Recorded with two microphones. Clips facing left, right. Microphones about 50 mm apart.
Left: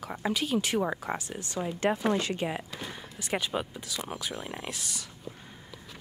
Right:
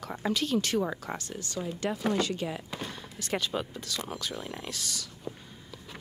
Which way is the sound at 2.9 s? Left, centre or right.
Centre.